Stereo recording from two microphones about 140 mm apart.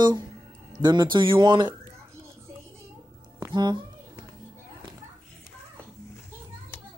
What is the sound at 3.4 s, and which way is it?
Speech, 30° right (ahead or behind).